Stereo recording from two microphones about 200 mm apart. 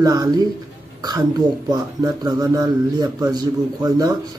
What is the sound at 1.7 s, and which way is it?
A man's voice, 20° right (ahead or behind).